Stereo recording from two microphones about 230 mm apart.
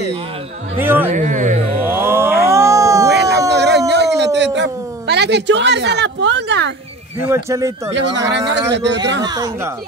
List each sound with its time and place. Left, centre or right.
0.7 s speech: centre
1.0 s speech: right
1.9 s a sound: centre
3.1 s a sound: right
7.2 s speech: centre
7.9 s speech: right
9.2 s speech: centre